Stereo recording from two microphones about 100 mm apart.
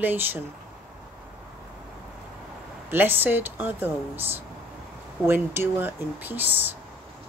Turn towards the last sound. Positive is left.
turn(degrees=-20)  # may be behind; listen again after turning